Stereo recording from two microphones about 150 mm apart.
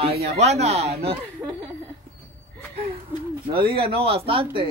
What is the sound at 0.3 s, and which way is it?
Speech, 45° right (ahead or behind).